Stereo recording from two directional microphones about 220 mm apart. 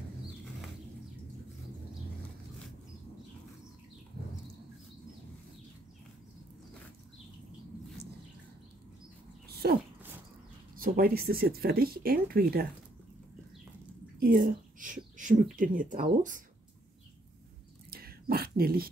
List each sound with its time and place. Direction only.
9.6 s speech: 45° right (ahead or behind)
14.2 s a woman's voice: 40° right (ahead or behind)
17.8 s a sound: 40° right (ahead or behind)